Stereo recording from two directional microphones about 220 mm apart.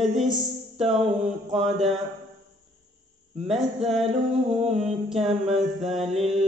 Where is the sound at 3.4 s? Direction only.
Centre (ahead or behind).